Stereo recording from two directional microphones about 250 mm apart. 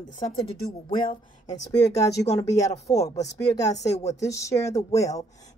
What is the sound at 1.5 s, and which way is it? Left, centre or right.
Speech, centre.